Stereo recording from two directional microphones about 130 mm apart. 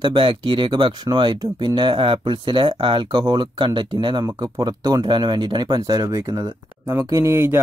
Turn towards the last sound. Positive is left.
turn(degrees=-20)  # may be behind; listen again after turning